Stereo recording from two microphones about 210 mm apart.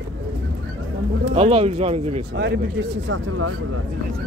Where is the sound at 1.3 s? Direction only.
25° right (ahead or behind).